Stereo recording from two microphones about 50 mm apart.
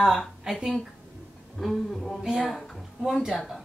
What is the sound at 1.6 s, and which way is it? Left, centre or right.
Speech, centre.